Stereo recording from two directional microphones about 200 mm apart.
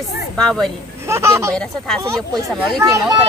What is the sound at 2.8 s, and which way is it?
Speech, 20° right (ahead or behind).